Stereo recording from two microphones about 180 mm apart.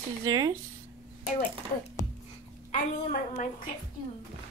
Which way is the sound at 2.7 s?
45° left (ahead or behind).